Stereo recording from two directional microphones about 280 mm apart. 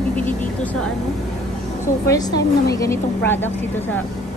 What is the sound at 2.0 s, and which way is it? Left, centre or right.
A woman's voice, centre.